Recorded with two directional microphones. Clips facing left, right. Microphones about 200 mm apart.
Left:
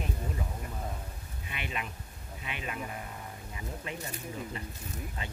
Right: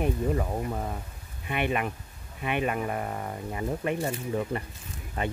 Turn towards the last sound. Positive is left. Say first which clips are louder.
# right 7 dB
turn(degrees=-60)  # may be behind; listen again after turning